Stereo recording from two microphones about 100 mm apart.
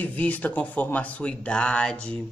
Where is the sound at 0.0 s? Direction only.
15° left (ahead or behind).